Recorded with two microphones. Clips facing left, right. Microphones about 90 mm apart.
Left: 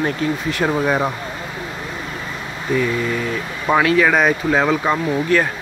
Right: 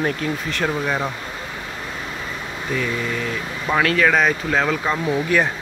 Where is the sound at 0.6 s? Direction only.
20° left (ahead or behind).